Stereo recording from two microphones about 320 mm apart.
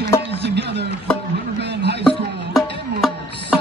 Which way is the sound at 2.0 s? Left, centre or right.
Centre.